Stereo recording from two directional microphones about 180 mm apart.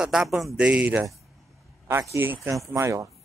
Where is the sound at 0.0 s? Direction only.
5° right (ahead or behind).